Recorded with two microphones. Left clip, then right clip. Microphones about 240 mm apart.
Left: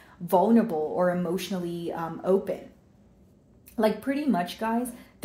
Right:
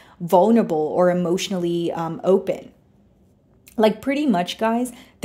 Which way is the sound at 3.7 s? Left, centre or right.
Right.